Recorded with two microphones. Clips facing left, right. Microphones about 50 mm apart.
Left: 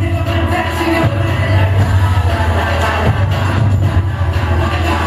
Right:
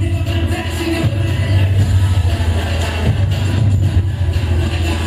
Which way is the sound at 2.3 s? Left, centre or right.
Left.